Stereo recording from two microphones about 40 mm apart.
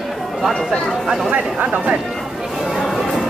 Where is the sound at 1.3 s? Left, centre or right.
Right.